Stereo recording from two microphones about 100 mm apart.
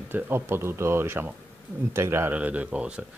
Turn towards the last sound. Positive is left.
turn(degrees=-10)  # may be behind; listen again after turning